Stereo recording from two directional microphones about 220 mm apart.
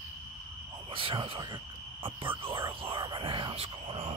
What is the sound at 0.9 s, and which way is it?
Owl, 25° right (ahead or behind).